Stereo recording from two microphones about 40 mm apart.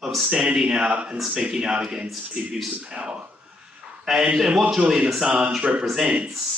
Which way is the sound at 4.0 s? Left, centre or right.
Centre.